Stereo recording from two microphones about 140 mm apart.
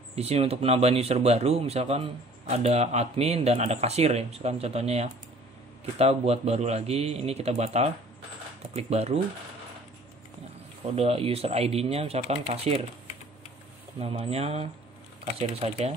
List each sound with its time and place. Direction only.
0.1 s speech: 45° right (ahead or behind)
11.0 s speech: 45° right (ahead or behind)
13.9 s speech: 45° right (ahead or behind)